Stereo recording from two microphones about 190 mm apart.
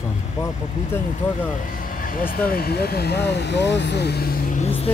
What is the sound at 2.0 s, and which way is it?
Speech, 45° left (ahead or behind).